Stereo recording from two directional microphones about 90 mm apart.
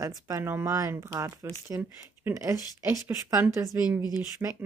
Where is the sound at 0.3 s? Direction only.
25° right (ahead or behind).